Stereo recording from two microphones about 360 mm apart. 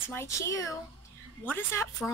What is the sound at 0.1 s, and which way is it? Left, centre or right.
A child's voice, centre.